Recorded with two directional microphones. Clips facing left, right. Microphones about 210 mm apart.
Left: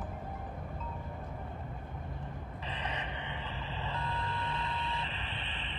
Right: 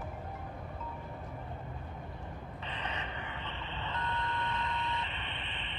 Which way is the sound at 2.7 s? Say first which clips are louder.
Left 1 dB; 35° left (ahead or behind).